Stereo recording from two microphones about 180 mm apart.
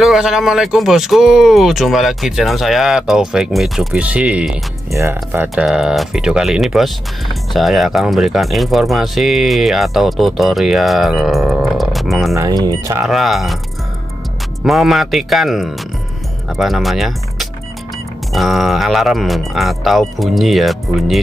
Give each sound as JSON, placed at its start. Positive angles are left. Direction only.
{"t": 0.0, "sound": "speech", "side_deg": 0}
{"t": 5.5, "sound": "speech", "side_deg": 0}
{"t": 12.4, "sound": "speech", "side_deg": -20}
{"t": 13.0, "sound": "speech", "side_deg": 0}
{"t": 14.6, "sound": "speech", "side_deg": 0}